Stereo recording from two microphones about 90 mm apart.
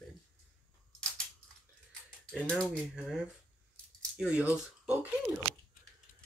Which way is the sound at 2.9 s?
5° right (ahead or behind).